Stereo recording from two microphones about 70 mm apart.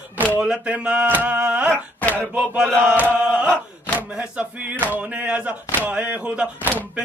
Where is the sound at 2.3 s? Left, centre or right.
Centre.